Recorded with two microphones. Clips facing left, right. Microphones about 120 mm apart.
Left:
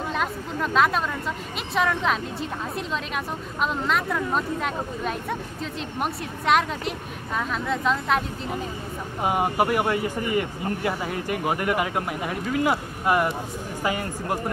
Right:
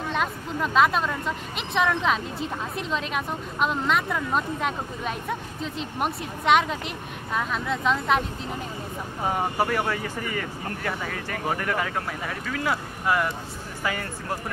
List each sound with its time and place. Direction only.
0.1 s a woman's voice: centre (ahead or behind)
9.2 s speech: 15° left (ahead or behind)